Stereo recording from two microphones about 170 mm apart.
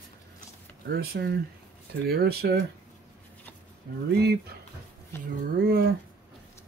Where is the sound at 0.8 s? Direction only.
65° right (ahead or behind).